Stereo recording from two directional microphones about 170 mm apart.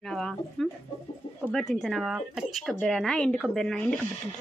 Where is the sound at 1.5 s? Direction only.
Centre (ahead or behind).